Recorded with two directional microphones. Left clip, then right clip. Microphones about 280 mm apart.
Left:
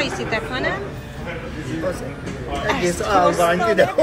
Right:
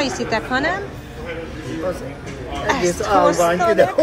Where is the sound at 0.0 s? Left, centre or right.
Centre.